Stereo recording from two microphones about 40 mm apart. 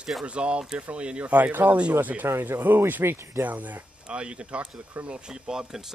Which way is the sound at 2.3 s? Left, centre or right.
Right.